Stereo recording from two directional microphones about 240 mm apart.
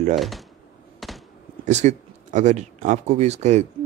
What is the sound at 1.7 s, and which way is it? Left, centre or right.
Speech, right.